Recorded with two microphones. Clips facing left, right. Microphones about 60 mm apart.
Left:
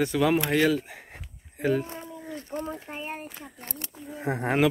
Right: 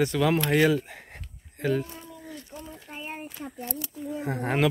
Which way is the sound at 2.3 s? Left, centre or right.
Left.